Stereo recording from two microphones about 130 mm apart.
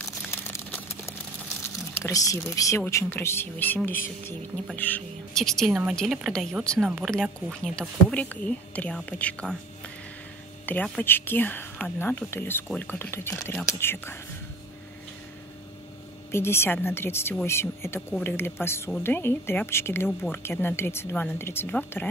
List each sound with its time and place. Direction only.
0.0 s crumpling: 20° left (ahead or behind)
2.0 s speech: 25° left (ahead or behind); by 9.6 s 5° left (ahead or behind)
10.6 s speech: 15° left (ahead or behind)
16.3 s speech: 20° left (ahead or behind)